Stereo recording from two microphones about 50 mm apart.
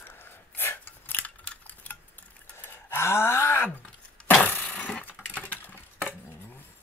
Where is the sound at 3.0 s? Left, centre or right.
Left.